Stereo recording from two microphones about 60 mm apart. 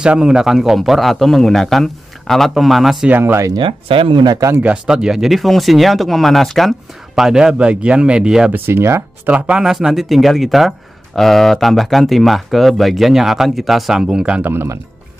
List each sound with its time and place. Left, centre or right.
0.0 s speech: centre
3.1 s speech: right
4.8 s speech: centre
7.2 s speech: centre
8.6 s speech: right
9.3 s speech: centre
14.4 s speech: right